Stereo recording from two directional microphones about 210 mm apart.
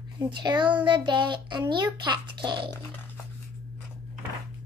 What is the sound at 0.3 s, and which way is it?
A child's voice, 20° right (ahead or behind).